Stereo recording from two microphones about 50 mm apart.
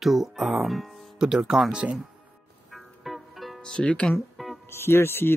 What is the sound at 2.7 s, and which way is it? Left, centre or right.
Music, centre.